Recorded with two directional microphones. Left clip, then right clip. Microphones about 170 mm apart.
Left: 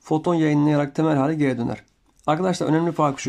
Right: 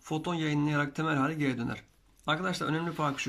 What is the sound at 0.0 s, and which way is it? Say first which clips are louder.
Speech: left 12 dB; 35° left (ahead or behind).